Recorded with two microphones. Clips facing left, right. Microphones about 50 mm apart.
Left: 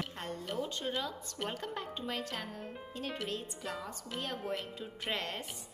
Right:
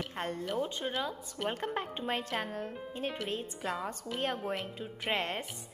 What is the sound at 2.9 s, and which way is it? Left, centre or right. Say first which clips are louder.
Speech: right 2 dB; right.